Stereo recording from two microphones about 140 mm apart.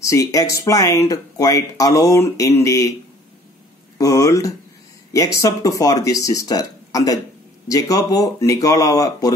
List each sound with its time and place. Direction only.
0.0 s speech: 20° left (ahead or behind)
4.0 s speech: 25° left (ahead or behind)